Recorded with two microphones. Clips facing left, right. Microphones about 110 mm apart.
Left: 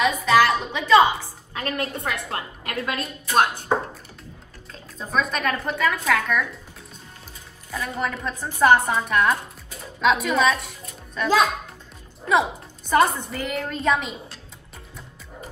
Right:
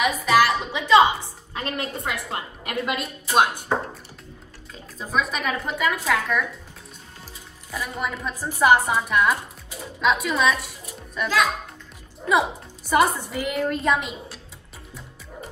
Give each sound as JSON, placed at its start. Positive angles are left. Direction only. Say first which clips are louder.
{"t": 0.0, "sound": "music", "louder": "left 1 dB", "side_deg": -10}
{"t": 1.5, "sound": "a woman's voice", "louder": "left 1 dB", "side_deg": -25}
{"t": 4.7, "sound": "a woman's voice", "louder": "even", "side_deg": -5}
{"t": 7.7, "sound": "a woman's voice", "louder": "left 1 dB", "side_deg": -10}
{"t": 12.3, "sound": "a woman's voice", "louder": "even", "side_deg": -5}